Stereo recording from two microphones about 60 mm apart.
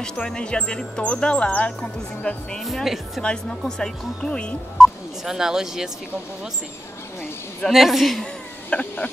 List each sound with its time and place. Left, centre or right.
0.3 s speech: centre
2.6 s a man's voice: centre
3.2 s speech: centre
4.7 s speech: centre
7.7 s a man's voice: centre
8.6 s speech: left